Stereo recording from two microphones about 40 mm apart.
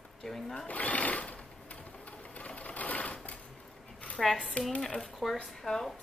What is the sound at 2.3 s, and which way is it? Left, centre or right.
Sewing machine, left.